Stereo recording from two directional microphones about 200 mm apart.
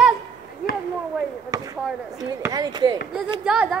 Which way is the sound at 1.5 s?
15° right (ahead or behind).